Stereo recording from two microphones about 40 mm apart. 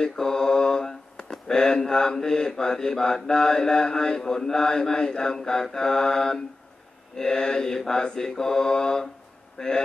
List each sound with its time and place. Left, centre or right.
0.0 s speech: centre